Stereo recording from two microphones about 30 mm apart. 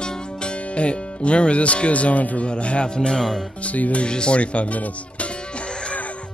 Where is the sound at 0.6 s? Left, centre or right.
Left.